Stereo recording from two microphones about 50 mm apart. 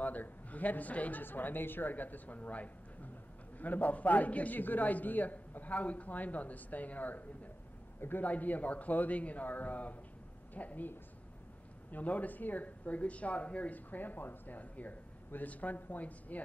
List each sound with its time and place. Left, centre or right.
0.0 s speech: left